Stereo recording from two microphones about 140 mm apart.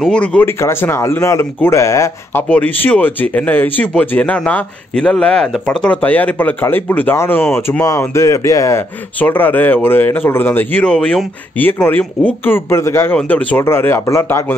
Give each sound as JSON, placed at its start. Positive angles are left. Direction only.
{"t": 0.0, "sound": "speech", "side_deg": 5}
{"t": 2.5, "sound": "speech", "side_deg": 10}